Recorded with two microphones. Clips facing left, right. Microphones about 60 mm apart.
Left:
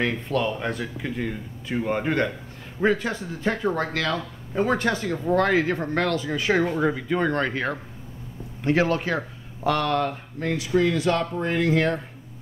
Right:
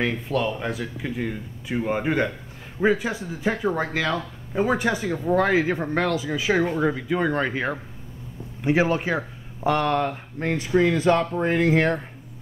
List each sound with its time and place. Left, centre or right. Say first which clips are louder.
0.0 s speech: even; centre